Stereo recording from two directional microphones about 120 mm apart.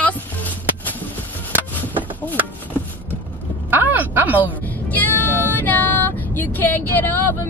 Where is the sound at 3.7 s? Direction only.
15° right (ahead or behind).